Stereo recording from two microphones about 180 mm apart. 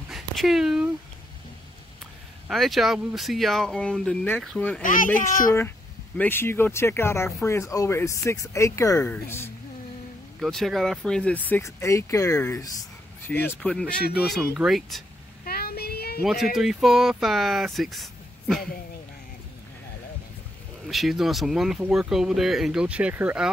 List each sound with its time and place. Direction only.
0.1 s a sound: centre (ahead or behind)
2.4 s speech: centre (ahead or behind)
4.8 s a child's voice: 45° left (ahead or behind)
6.1 s speech: 10° left (ahead or behind)
10.4 s speech: centre (ahead or behind)
15.4 s child singing: 60° left (ahead or behind)
16.2 s speech: centre (ahead or behind)
20.9 s speech: centre (ahead or behind)